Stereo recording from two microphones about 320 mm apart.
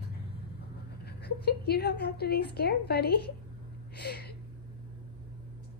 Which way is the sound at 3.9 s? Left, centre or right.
Left.